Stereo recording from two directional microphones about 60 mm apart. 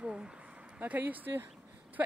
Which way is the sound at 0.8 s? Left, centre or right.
Right.